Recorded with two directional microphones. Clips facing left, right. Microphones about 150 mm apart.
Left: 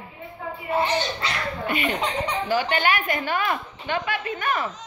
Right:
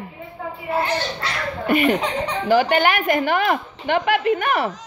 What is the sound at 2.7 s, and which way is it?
A woman's voice, 50° right (ahead or behind).